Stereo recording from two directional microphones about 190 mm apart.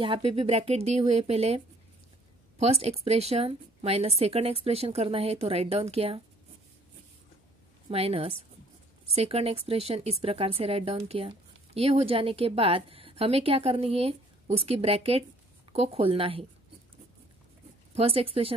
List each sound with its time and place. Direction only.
0.0 s a woman's voice: 30° right (ahead or behind)
2.6 s a woman's voice: 35° right (ahead or behind)
7.9 s a woman's voice: 30° right (ahead or behind)
17.9 s speech: 30° right (ahead or behind)